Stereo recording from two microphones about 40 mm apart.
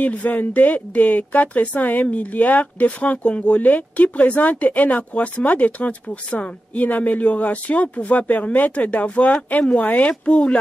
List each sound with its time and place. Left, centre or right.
0.0 s speech: left